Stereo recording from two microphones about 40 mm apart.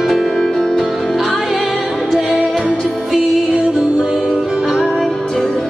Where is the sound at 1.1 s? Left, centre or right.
Centre.